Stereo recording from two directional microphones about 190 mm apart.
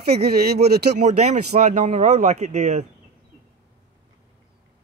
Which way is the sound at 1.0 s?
35° right (ahead or behind).